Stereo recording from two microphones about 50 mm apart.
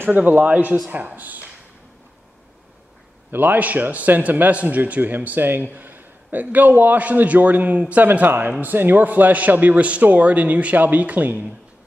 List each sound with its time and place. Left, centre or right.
0.0 s a man's voice: right
3.3 s a man's voice: right